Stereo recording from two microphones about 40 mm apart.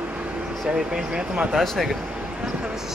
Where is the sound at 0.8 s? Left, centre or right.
Centre.